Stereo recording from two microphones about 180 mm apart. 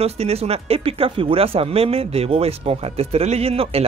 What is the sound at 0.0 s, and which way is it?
Speech, 35° right (ahead or behind).